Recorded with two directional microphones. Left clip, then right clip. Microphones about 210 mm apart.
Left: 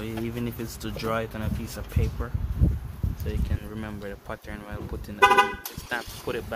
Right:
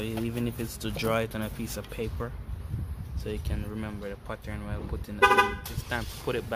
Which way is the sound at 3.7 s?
Centre (ahead or behind).